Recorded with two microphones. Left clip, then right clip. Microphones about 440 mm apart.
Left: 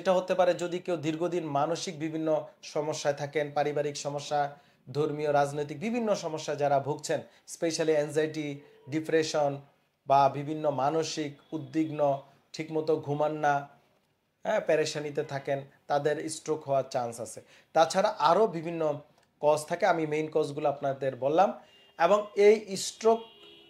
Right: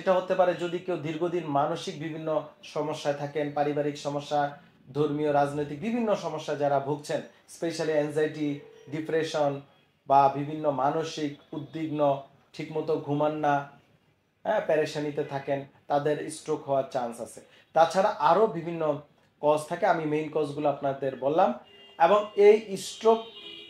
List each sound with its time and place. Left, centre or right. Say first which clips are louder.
0.0 s speech: right 1 dB; left